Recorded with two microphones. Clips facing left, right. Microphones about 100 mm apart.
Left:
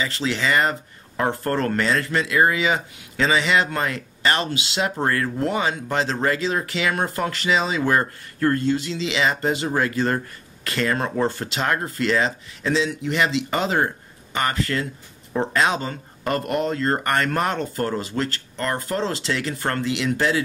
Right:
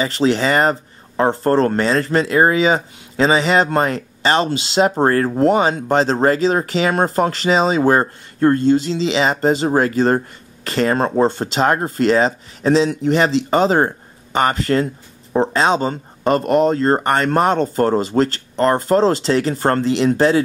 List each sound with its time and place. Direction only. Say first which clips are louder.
0.0 s speech: right 8 dB; 35° right (ahead or behind)